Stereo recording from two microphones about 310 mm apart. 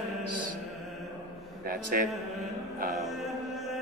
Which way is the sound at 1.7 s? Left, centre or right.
Right.